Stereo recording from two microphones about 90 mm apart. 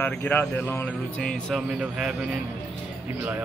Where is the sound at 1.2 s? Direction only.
10° left (ahead or behind).